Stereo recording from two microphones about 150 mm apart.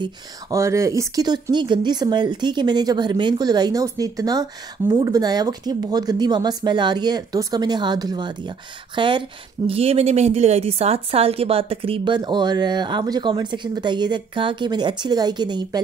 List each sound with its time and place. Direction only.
0.0 s a woman's voice: 20° right (ahead or behind)